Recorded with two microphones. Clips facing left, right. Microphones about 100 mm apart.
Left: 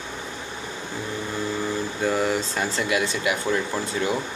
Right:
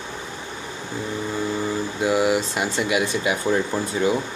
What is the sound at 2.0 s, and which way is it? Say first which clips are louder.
Air conditioning: right 4 dB; 10° right (ahead or behind).